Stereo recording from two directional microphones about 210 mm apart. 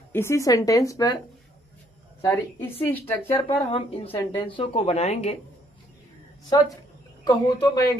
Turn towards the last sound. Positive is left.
turn(degrees=15)  # may be behind; listen again after turning